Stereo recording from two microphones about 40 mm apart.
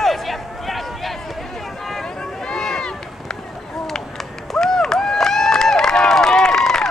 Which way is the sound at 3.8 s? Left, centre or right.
Centre.